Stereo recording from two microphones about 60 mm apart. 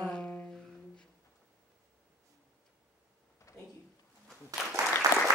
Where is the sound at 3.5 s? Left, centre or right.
Left.